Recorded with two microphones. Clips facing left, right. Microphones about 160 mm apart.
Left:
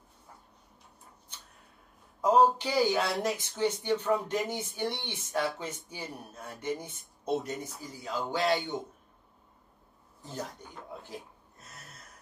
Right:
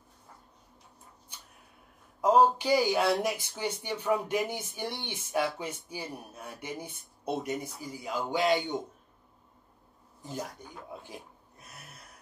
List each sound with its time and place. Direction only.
2.3 s speech: 10° right (ahead or behind)
10.2 s speech: 10° right (ahead or behind)
11.0 s a sound: 15° right (ahead or behind)